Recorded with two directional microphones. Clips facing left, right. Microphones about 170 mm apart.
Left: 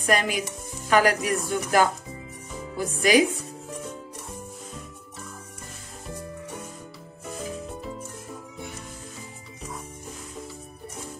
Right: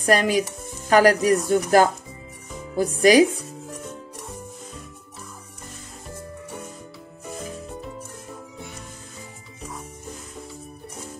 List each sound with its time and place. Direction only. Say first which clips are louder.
0.0 s speech: right 5 dB; 35° right (ahead or behind)
3.0 s speech: right 5 dB; 35° right (ahead or behind)